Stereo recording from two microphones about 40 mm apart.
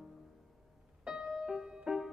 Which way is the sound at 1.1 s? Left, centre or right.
Centre.